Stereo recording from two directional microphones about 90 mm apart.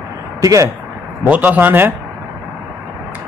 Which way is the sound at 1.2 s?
15° right (ahead or behind).